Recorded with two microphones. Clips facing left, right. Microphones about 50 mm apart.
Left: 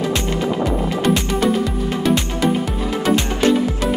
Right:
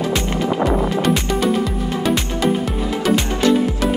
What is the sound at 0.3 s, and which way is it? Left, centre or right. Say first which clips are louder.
Music: right 1 dB; right.